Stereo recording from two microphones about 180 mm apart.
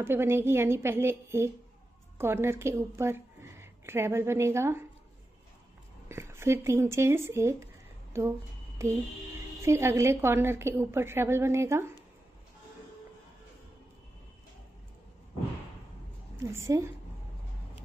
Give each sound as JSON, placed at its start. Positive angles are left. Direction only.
{"t": 0.0, "sound": "a woman's voice", "side_deg": -15}
{"t": 6.0, "sound": "speech", "side_deg": -15}
{"t": 9.6, "sound": "a woman's voice", "side_deg": -15}
{"t": 16.4, "sound": "a woman's voice", "side_deg": -15}